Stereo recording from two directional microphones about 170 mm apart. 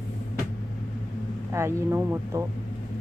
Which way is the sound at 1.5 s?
15° right (ahead or behind).